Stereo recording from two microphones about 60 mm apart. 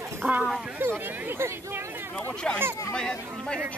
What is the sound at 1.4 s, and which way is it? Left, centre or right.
Speech, right.